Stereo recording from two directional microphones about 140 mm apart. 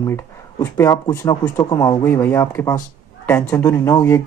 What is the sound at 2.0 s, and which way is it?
Speech, 15° left (ahead or behind).